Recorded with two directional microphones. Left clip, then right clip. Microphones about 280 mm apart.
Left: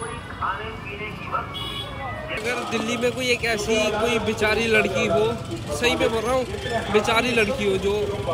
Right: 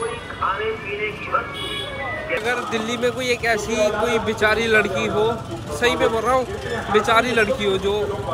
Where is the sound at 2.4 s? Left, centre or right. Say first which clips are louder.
Right 3 dB; centre.